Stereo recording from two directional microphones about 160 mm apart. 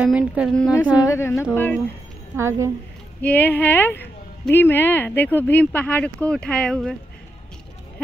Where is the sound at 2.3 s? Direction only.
15° right (ahead or behind).